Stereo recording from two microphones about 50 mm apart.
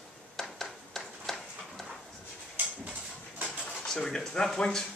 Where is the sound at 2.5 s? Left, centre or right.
Right.